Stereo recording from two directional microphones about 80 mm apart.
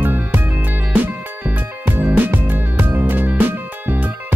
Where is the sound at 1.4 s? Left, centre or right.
Right.